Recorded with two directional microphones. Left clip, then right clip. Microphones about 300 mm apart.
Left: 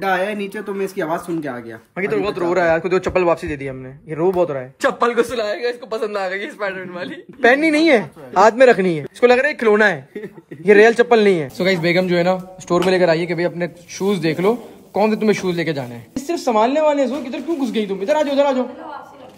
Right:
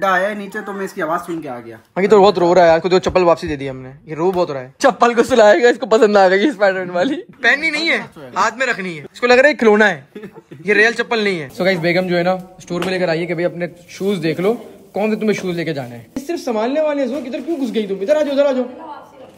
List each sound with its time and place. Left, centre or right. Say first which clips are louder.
0.0 s a man's voice: right 3 dB; centre
2.0 s a man's voice: right 10 dB; centre
5.3 s a man's voice: right 11 dB; right
7.4 s speech: left 2 dB; centre
9.3 s a man's voice: right 8 dB; centre